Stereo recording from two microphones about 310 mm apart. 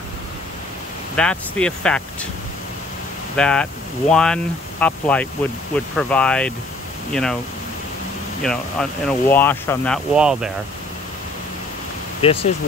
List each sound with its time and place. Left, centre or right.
1.1 s speech: centre
3.3 s speech: centre
8.4 s speech: centre
12.2 s speech: centre